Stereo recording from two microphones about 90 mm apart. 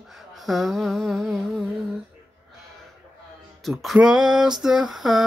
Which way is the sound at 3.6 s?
Centre (ahead or behind).